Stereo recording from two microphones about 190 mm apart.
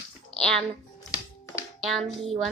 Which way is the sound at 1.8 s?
Centre (ahead or behind).